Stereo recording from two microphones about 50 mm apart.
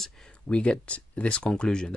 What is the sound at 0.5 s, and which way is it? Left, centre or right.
Speech, left.